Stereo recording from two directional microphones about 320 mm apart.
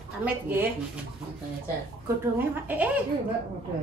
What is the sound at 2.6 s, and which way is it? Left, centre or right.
Speech, centre.